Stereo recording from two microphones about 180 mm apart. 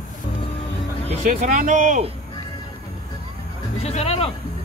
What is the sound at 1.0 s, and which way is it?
Speech, 40° right (ahead or behind).